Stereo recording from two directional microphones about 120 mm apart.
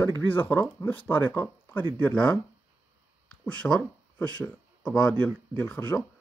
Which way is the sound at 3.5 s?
5° left (ahead or behind).